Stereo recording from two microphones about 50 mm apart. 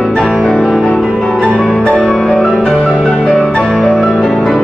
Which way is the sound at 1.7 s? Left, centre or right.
Left.